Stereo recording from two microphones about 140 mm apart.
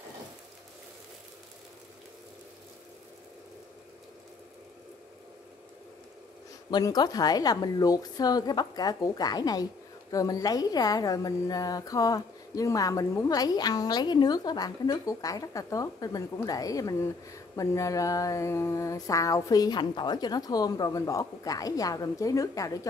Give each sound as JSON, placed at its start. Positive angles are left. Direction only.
{"t": 6.7, "sound": "a woman's voice", "side_deg": 30}